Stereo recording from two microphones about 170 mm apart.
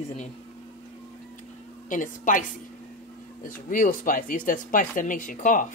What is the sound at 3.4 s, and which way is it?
A woman's voice, 55° left (ahead or behind).